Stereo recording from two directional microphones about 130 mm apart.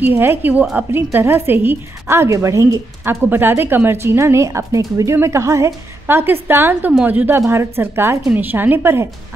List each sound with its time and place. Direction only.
0.0 s a woman's voice: 15° right (ahead or behind)